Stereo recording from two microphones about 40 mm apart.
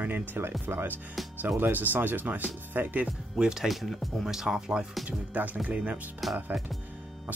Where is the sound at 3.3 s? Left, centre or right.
Right.